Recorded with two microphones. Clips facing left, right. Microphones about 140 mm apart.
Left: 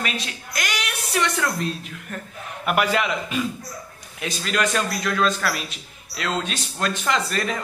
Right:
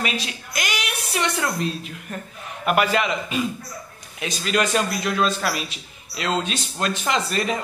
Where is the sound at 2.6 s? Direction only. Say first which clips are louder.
Right 1 dB; centre (ahead or behind).